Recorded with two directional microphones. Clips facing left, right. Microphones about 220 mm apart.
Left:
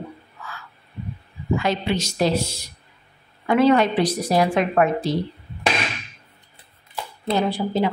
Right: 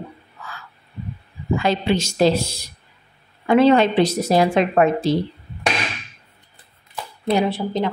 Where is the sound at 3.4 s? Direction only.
25° right (ahead or behind).